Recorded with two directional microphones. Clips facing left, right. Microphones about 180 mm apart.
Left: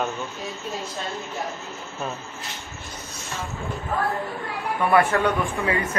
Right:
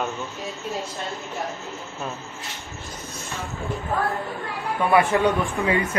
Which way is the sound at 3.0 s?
55° right (ahead or behind).